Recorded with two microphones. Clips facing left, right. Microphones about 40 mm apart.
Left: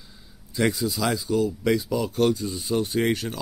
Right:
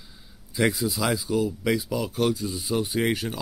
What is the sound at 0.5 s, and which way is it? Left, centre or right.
Speech, centre.